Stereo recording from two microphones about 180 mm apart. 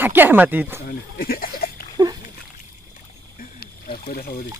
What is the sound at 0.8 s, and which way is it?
Goat, 55° left (ahead or behind).